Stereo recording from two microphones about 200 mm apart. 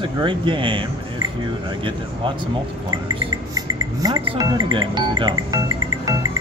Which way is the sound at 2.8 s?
15° right (ahead or behind).